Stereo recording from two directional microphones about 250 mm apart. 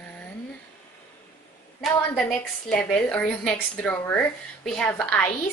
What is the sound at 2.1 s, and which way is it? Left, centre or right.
A woman's voice, centre.